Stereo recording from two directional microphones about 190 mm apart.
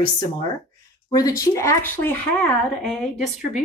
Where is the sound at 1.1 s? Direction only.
20° left (ahead or behind).